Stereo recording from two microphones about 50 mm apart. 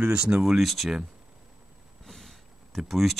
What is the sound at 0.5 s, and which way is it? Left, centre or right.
Speech, centre.